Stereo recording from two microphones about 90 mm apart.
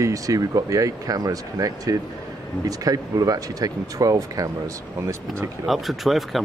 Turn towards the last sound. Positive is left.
turn(degrees=0)  # may be behind; listen again after turning